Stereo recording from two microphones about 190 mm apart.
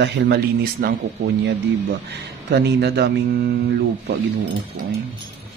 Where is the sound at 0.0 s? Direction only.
60° right (ahead or behind).